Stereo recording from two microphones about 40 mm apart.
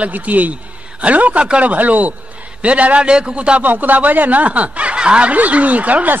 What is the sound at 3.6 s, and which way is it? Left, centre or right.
Speech, right.